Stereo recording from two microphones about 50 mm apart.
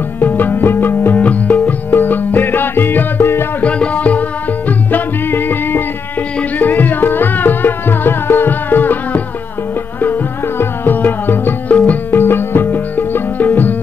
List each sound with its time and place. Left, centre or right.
0.2 s music: left
1.2 s music: left
3.6 s music: left
4.6 s music: left
10.6 s music: left
11.7 s music: left
12.1 s music: left